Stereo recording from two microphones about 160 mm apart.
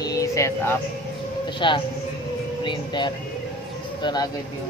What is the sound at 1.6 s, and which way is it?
Speech, 30° left (ahead or behind).